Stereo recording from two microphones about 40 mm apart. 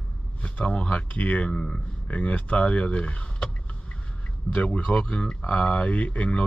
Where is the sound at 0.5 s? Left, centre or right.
Left.